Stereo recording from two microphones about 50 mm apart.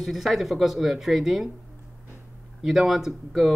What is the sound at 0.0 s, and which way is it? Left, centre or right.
Speech, centre.